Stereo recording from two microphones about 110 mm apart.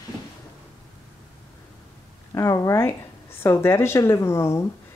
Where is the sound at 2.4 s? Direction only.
30° left (ahead or behind).